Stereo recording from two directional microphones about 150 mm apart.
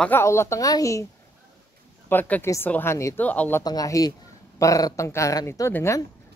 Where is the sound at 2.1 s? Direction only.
10° left (ahead or behind).